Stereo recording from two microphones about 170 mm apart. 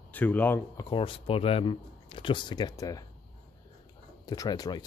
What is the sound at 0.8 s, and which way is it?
A man's voice, 30° left (ahead or behind).